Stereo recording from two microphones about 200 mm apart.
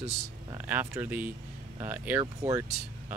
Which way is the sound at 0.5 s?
10° right (ahead or behind).